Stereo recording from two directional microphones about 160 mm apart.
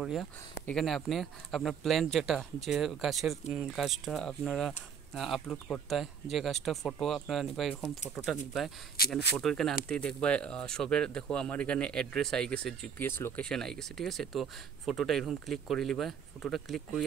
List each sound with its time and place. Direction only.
0.0 s speech: centre (ahead or behind)
9.0 s speech: 70° left (ahead or behind)
9.4 s speech: 5° left (ahead or behind)